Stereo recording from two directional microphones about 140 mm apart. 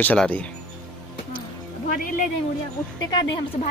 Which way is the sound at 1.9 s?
70° left (ahead or behind).